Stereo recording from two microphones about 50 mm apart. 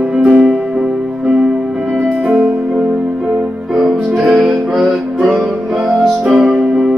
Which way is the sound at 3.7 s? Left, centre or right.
Centre.